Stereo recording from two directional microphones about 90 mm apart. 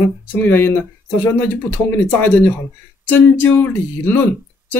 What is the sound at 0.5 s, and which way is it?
Speech, 25° left (ahead or behind).